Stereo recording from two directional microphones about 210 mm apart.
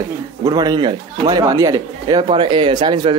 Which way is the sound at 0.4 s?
20° right (ahead or behind).